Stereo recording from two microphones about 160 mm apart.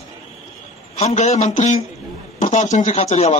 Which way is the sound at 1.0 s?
45° left (ahead or behind).